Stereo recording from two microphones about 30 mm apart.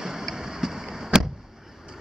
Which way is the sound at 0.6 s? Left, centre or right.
Centre.